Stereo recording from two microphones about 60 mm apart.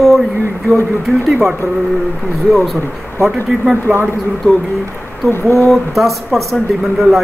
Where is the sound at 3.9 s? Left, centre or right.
Right.